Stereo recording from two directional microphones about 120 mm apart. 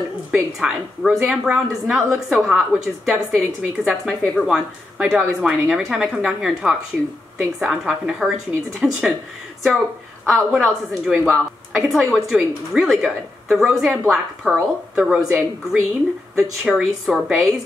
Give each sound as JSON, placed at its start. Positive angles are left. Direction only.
{"t": 0.3, "sound": "a woman's voice", "side_deg": -5}
{"t": 10.2, "sound": "a woman's voice", "side_deg": 0}